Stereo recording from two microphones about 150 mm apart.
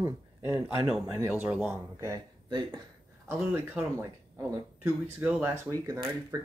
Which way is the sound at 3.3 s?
10° right (ahead or behind).